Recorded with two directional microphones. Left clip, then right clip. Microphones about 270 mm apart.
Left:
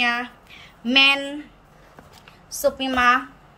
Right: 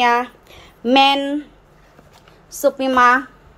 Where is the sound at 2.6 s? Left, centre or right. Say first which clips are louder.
Right 5 dB; centre.